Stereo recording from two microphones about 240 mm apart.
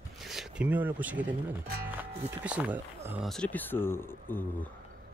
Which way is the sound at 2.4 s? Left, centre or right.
Centre.